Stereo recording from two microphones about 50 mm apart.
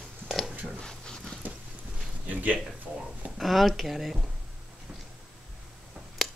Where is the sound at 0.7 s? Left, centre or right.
Centre.